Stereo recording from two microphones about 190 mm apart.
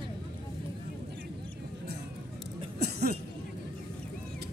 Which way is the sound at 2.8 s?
55° right (ahead or behind).